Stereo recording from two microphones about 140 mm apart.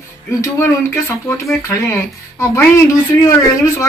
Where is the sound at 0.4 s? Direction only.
20° left (ahead or behind).